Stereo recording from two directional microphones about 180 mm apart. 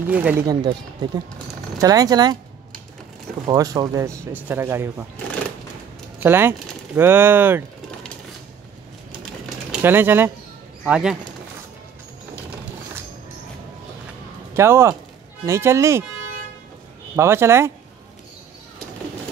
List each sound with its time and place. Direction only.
0.1 s speech: 10° right (ahead or behind)
0.5 s speech: 25° right (ahead or behind)
3.4 s speech: 20° right (ahead or behind)
6.1 s speech: 10° right (ahead or behind)
9.7 s speech: 10° right (ahead or behind)
14.5 s speech: 15° right (ahead or behind)
17.1 s speech: 15° right (ahead or behind)